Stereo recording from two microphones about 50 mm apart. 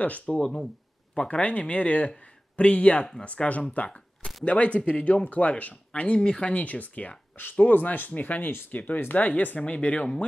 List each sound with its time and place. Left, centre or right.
0.0 s speech: left
1.1 s speech: centre
3.7 s camera: left
4.5 s speech: left
6.5 s speech: left